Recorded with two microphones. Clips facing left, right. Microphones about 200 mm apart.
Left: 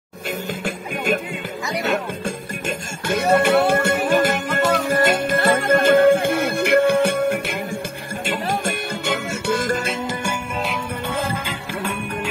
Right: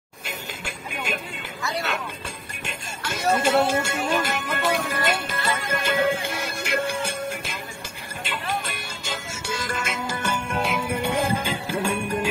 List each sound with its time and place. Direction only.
0.7 s music: 50° left (ahead or behind)
3.1 s music: 60° left (ahead or behind)
8.3 s music: 45° left (ahead or behind)
10.5 s music: centre (ahead or behind)
11.1 s music: 15° right (ahead or behind)